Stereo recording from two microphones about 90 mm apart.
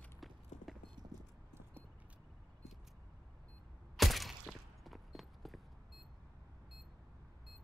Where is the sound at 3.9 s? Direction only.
Centre (ahead or behind).